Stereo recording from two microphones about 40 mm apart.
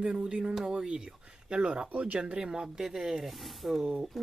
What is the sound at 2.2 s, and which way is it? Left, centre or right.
Speech, right.